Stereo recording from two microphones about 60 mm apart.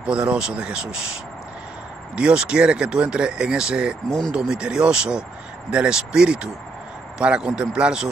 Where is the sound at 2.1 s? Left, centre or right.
Centre.